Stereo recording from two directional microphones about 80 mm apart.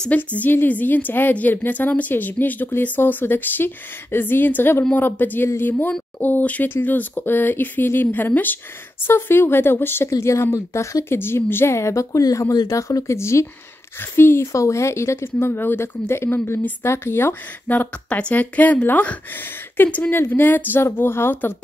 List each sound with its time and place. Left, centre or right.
0.1 s a woman's voice: centre